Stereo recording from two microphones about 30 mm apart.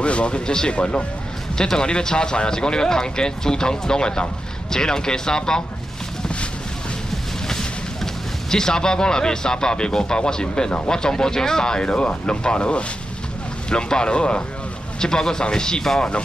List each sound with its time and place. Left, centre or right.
0.0 s speech: left
1.8 s speech: left
7.4 s speech: centre; by 14.4 s left
15.0 s speech: left